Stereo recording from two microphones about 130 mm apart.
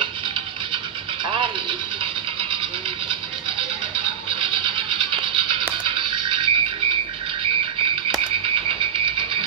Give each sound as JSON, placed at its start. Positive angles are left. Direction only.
{"t": 1.3, "sound": "music", "side_deg": -40}
{"t": 3.9, "sound": "music", "side_deg": -40}